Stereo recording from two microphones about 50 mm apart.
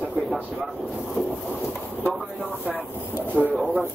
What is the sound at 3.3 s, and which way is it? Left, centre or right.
Speech, left.